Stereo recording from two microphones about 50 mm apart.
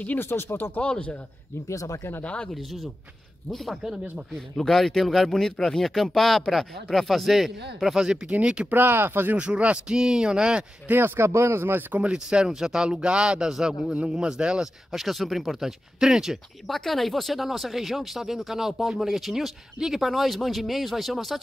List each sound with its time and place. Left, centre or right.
0.2 s speech: left
0.7 s speech: left
1.7 s speech: left
2.2 s speech: left
2.5 s speech: centre
8.3 s a man's voice: right
8.6 s speech: right
9.4 s a man's voice: right
10.9 s speech: right
12.0 s speech: centre
14.9 s speech: centre
16.6 s speech: centre